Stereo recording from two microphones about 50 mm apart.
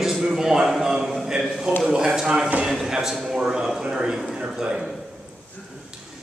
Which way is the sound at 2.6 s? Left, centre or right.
Centre.